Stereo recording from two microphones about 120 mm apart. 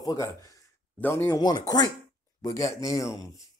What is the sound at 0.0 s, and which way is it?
Speech, 30° left (ahead or behind).